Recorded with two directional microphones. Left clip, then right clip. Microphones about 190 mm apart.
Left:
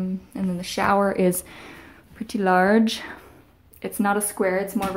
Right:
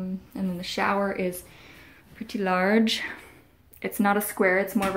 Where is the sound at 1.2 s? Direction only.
35° left (ahead or behind).